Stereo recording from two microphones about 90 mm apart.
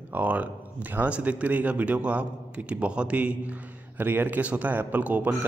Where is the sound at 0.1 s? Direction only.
15° right (ahead or behind).